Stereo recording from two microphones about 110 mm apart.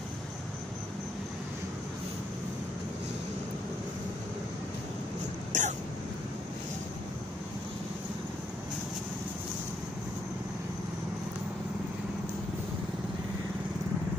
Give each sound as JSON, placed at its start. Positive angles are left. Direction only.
{"t": 5.5, "sound": "hiccup", "side_deg": -90}